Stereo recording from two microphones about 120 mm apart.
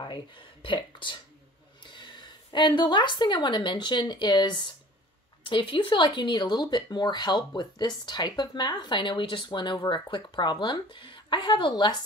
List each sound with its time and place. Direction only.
0.0 s a woman's voice: 40° left (ahead or behind)